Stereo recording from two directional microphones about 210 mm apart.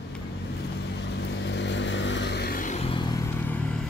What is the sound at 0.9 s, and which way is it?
Vehicle, 55° left (ahead or behind).